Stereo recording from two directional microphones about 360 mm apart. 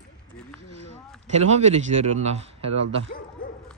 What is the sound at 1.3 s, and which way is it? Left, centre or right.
Speech, centre.